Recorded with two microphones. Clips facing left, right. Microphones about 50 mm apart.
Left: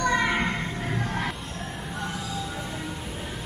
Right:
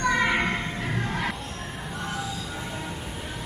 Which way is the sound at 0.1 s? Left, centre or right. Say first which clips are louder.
Right 1 dB; right.